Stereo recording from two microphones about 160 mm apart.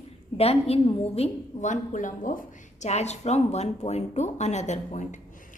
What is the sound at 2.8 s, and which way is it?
Speech, 45° left (ahead or behind).